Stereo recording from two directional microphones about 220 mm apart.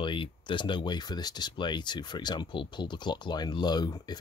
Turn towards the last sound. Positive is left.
turn(degrees=20)  # may be behind; listen again after turning